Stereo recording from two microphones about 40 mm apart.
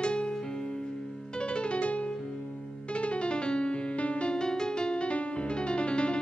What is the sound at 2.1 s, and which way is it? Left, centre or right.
Music, centre.